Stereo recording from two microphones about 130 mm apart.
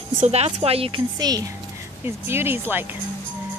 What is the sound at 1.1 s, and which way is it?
Speech, 30° right (ahead or behind).